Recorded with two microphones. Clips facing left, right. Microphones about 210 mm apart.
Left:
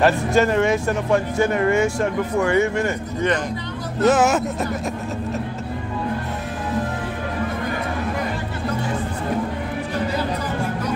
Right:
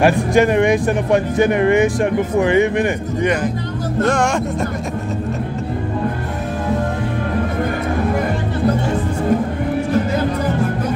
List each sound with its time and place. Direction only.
0.0 s speech: 15° right (ahead or behind)
4.0 s speech: 5° left (ahead or behind)